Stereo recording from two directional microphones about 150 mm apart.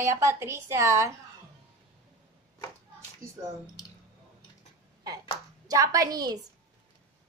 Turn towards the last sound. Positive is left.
turn(degrees=-25)  # may be behind; listen again after turning